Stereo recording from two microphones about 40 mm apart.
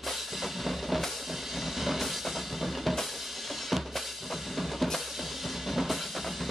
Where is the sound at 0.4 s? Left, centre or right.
Centre.